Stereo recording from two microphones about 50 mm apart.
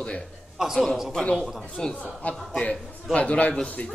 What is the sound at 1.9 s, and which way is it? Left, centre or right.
Speech, left.